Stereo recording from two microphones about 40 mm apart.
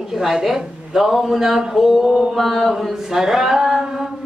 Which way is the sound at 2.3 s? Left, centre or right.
Centre.